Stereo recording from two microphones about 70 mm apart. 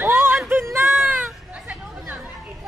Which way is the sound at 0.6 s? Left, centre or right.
Right.